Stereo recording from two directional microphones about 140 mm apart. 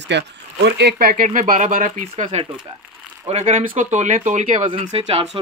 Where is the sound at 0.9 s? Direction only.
80° right.